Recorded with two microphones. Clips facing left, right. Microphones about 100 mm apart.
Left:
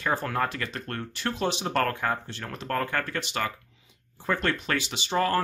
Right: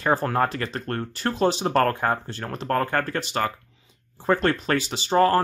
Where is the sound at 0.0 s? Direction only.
35° right (ahead or behind).